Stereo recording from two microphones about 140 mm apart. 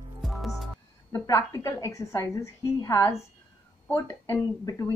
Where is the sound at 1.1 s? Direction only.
25° left (ahead or behind).